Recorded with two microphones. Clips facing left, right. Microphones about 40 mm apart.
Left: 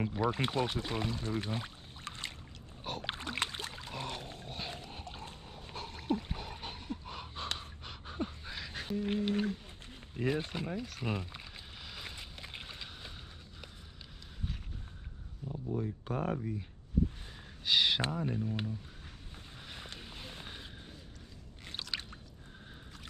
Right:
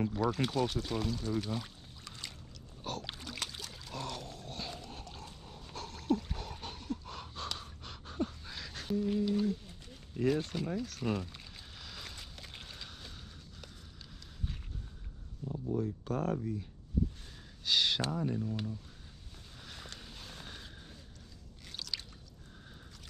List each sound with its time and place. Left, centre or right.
0.0 s speech: left
3.0 s rowboat: left
3.9 s boat: left
4.5 s a sound: left
9.0 s speech: left
10.1 s a sound: left
15.4 s a sound: centre
15.8 s speech: centre
17.6 s speech: centre
19.7 s vehicle: left
21.7 s drip: left